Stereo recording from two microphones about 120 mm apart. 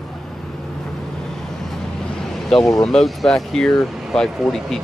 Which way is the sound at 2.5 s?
5° left (ahead or behind).